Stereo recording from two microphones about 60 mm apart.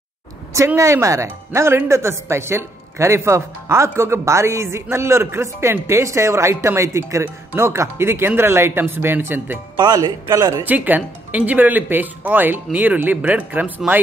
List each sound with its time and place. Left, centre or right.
0.7 s speech: right
9.9 s speech: right
10.6 s speech: right